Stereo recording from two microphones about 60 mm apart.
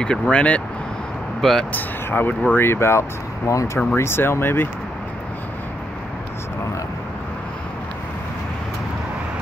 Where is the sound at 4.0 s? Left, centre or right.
Left.